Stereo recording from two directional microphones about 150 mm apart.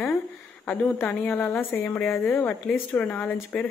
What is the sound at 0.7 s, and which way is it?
Speech, 10° left (ahead or behind).